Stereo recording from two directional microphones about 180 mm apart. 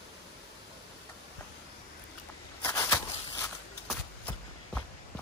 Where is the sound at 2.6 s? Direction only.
15° left (ahead or behind).